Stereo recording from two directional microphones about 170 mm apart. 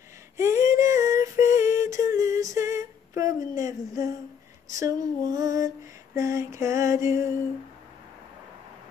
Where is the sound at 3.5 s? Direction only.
20° right (ahead or behind).